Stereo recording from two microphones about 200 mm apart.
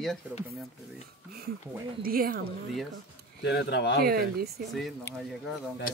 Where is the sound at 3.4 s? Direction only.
60° left (ahead or behind).